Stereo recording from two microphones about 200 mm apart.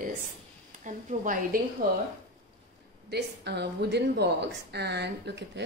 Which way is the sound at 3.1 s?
55° right (ahead or behind).